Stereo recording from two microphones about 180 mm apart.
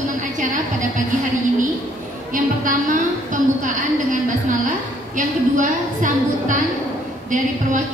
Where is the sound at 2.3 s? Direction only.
50° right (ahead or behind).